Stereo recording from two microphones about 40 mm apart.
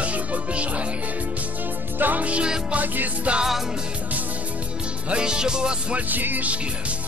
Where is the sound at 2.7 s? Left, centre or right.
Right.